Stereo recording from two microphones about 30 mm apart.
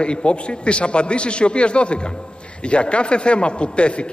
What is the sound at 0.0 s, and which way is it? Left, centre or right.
A man's voice, left.